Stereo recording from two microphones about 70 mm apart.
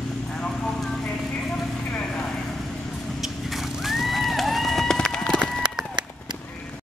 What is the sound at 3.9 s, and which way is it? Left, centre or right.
Horse, centre.